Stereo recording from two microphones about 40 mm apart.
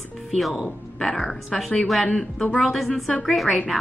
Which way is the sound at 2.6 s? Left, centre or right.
Centre.